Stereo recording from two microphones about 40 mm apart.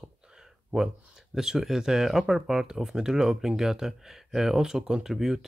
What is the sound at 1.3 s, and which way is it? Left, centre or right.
Speech, centre.